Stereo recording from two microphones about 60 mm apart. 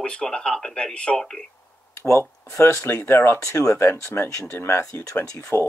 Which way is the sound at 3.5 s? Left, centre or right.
Left.